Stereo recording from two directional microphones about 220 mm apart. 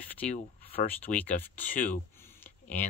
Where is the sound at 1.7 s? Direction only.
35° left (ahead or behind).